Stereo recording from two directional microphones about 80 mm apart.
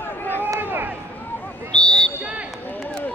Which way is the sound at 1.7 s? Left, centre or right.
Centre.